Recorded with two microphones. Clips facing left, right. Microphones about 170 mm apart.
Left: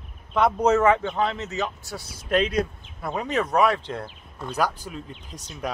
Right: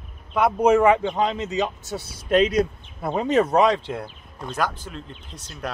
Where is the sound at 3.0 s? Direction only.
30° right (ahead or behind).